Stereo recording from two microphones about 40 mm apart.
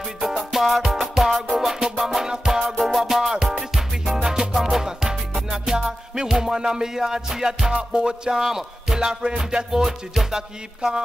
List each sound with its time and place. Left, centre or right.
0.2 s music: centre
2.2 s music: centre
2.8 s music: centre
9.7 s music: centre